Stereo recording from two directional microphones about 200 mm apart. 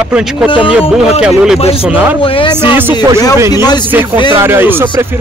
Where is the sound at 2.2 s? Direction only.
25° left (ahead or behind).